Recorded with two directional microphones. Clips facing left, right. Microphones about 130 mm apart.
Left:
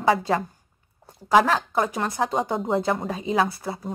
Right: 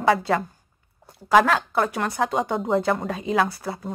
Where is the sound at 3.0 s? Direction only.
25° left (ahead or behind).